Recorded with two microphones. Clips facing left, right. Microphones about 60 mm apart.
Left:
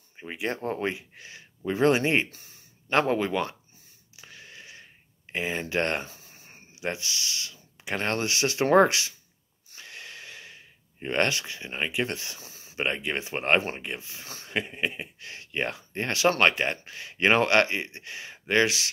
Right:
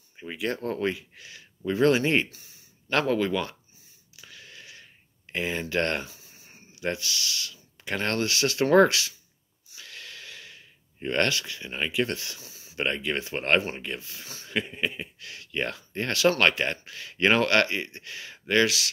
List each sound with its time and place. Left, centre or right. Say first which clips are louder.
0.2 s speech: right 1 dB; left
4.2 s a sound: left 1 dB; left
6.8 s speech: right 2 dB; left
9.7 s gasp: left 1 dB; left
12.7 s speech: right 1 dB; left